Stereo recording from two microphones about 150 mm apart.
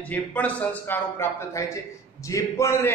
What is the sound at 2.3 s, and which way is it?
Speech, 20° left (ahead or behind).